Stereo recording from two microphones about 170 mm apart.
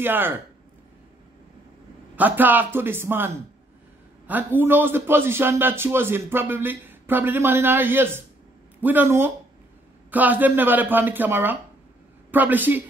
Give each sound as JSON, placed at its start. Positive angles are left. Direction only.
{"t": 0.0, "sound": "a man's voice", "side_deg": -10}
{"t": 2.1, "sound": "a man's voice", "side_deg": -10}